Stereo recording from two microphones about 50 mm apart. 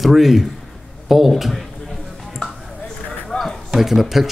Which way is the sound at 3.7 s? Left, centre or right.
Centre.